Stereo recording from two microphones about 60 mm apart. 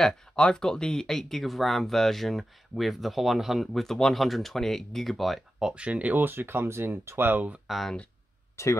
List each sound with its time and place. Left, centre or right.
0.0 s speech: centre
3.8 s speech: centre
5.6 s speech: centre
5.9 s speech: right
7.6 s speech: centre
8.6 s speech: left